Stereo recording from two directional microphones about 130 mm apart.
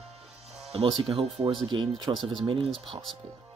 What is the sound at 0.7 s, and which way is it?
Speech, 45° right (ahead or behind).